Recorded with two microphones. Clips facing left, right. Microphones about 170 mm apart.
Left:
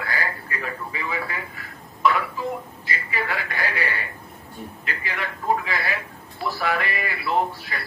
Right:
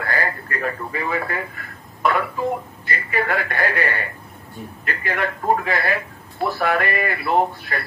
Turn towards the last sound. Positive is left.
turn(degrees=-55)  # may be behind; listen again after turning